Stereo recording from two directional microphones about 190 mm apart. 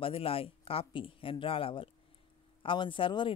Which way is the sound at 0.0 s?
30° left (ahead or behind).